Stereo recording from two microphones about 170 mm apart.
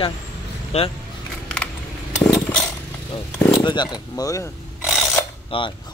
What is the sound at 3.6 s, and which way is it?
Speech, 25° left (ahead or behind).